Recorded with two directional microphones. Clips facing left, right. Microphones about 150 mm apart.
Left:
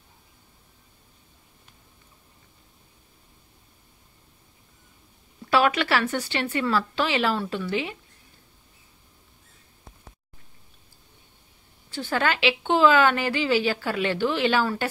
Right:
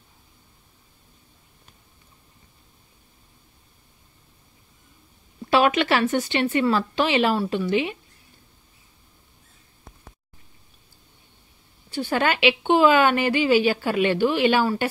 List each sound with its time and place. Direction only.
5.5 s a woman's voice: 20° right (ahead or behind)
11.9 s speech: 15° right (ahead or behind)